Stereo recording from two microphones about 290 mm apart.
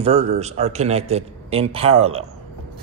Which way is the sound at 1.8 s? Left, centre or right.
Right.